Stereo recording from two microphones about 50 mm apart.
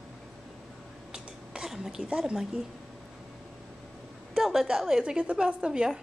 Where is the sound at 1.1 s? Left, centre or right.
Centre.